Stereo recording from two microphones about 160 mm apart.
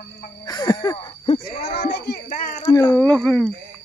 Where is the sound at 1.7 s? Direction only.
90° left.